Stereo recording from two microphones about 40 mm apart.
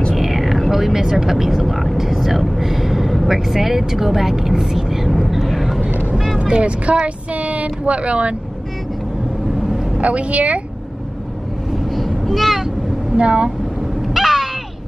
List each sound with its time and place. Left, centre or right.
0.1 s a sound: centre
3.4 s speech: centre
5.9 s vehicle: right
6.3 s speech: right
9.6 s vehicle: centre
9.9 s speech: right
11.7 s vehicle: centre
13.1 s speech: right
14.0 s a sound: centre